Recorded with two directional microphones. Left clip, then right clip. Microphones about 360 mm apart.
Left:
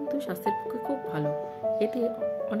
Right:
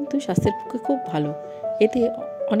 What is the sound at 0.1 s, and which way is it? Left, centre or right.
Speech, centre.